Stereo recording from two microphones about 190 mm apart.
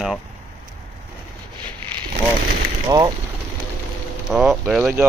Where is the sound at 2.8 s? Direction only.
20° right (ahead or behind).